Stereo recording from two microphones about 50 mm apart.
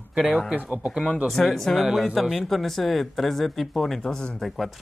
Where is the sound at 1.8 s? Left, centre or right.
Centre.